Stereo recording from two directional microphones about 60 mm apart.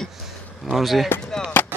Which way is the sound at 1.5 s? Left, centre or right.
Left.